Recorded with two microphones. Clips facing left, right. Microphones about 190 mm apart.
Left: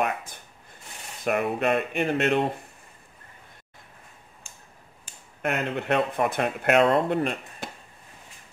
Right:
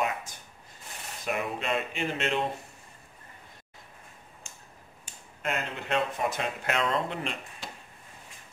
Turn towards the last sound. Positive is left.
turn(degrees=55)  # may be behind; listen again after turning